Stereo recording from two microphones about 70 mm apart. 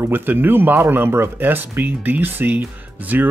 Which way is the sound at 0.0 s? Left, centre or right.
Right.